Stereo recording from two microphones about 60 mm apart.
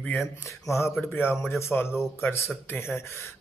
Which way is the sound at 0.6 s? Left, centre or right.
Left.